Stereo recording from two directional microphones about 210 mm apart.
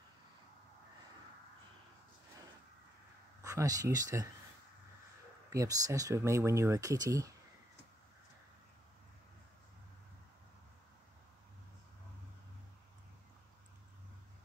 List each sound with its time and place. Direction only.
3.4 s speech: 15° right (ahead or behind)
5.5 s speech: 15° right (ahead or behind)